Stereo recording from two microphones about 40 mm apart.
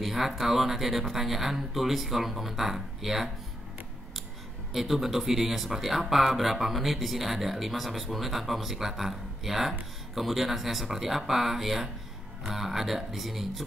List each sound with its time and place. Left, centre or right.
0.0 s speech: centre
4.7 s speech: centre